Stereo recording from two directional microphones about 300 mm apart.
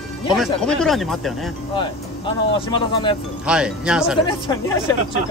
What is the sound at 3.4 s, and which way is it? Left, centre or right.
Speech, centre.